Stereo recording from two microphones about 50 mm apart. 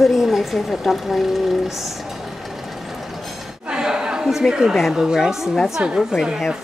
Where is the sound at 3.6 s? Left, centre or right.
Centre.